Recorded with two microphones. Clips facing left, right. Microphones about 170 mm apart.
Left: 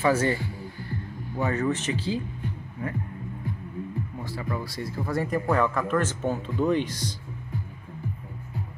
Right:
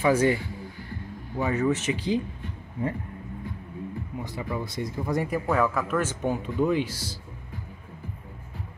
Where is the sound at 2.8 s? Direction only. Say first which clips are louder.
Right 4 dB; 25° right (ahead or behind).